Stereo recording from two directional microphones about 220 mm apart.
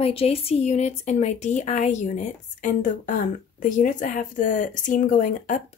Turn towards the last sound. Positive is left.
turn(degrees=35)  # may be behind; listen again after turning